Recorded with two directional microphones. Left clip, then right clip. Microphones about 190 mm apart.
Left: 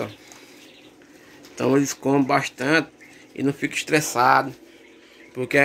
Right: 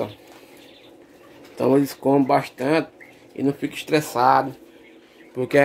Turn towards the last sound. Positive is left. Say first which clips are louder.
# right 2 dB
turn(degrees=-15)  # may be behind; listen again after turning